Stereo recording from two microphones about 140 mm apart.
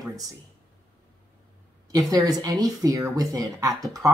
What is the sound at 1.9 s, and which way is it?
Speech, 25° right (ahead or behind).